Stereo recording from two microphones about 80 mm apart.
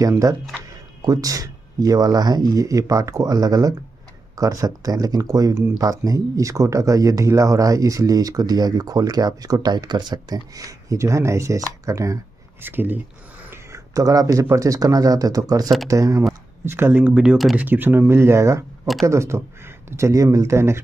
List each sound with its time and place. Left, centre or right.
0.0 s speech: right
12.6 s speech: right
13.5 s a sound: right
14.5 s speech: right
16.6 s speech: right